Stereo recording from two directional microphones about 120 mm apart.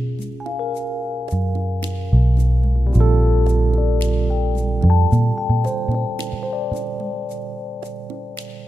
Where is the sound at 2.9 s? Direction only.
Centre (ahead or behind).